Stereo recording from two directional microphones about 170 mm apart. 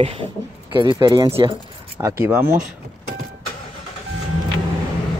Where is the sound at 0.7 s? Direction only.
25° right (ahead or behind).